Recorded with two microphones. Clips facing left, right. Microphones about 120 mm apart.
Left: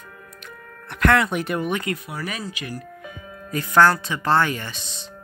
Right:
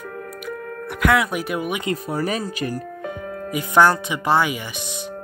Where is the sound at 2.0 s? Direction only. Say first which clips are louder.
Right 7 dB; 40° right (ahead or behind).